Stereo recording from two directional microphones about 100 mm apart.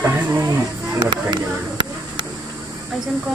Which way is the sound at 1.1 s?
55° right (ahead or behind).